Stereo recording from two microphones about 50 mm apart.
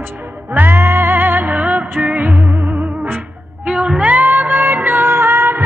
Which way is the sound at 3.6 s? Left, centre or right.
Right.